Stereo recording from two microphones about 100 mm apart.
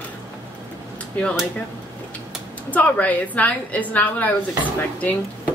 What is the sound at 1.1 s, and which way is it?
Speech, 15° left (ahead or behind).